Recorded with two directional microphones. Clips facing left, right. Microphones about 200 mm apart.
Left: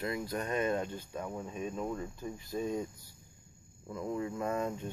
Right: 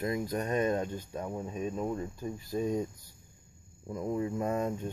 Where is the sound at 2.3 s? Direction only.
40° right (ahead or behind).